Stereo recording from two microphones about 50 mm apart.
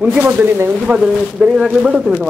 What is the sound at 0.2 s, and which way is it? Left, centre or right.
Speech, right.